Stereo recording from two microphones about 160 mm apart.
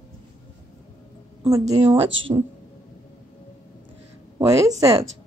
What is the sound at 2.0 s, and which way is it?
Speech, 35° right (ahead or behind).